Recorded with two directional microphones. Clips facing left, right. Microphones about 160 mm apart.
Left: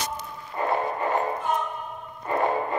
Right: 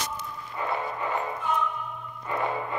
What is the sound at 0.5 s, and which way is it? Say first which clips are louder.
Music: left 5 dB; 45° left (ahead or behind).